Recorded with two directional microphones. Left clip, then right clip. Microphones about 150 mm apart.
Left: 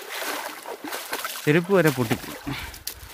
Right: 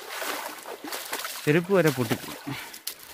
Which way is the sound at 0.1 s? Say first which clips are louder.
Left 2 dB; 5° right (ahead or behind).